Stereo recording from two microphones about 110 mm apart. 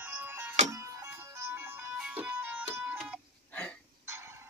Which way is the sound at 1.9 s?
10° right (ahead or behind).